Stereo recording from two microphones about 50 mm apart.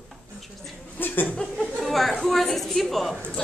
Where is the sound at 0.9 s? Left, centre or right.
Left.